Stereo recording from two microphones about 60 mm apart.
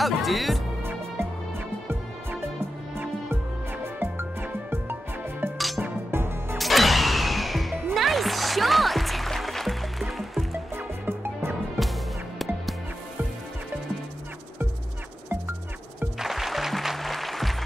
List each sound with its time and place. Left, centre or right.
0.0 s music: centre
3.8 s music: right
6.6 s music: centre
10.8 s music: right
16.2 s music: centre